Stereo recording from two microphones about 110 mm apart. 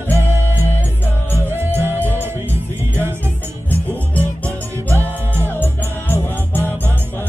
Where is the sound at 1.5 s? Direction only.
20° right (ahead or behind).